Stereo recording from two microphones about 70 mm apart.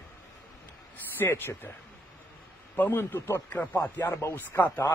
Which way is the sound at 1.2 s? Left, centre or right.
Left.